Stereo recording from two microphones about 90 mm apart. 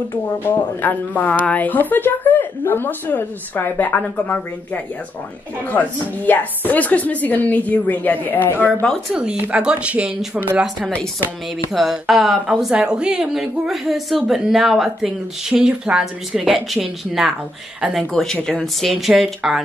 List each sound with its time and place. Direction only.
0.1 s a woman's voice: 20° left (ahead or behind)
5.7 s a woman's voice: 20° left (ahead or behind)
9.1 s speech: 10° right (ahead or behind)
11.7 s a woman's voice: centre (ahead or behind)